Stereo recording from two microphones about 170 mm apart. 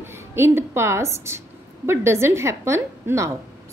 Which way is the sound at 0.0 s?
15° right (ahead or behind).